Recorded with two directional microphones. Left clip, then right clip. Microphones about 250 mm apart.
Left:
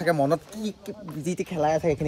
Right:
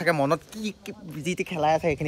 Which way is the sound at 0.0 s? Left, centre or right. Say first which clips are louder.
Even; centre.